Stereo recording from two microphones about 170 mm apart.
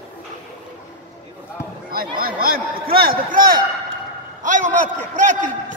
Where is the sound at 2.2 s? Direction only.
60° right (ahead or behind).